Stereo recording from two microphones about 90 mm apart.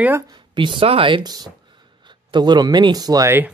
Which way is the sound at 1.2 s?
50° right (ahead or behind).